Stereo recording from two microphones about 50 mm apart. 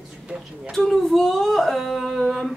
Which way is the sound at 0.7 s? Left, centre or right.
Centre.